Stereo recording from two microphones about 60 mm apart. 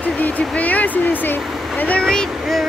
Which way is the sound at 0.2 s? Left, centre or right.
Left.